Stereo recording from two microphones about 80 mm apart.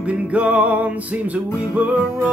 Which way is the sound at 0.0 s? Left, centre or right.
Centre.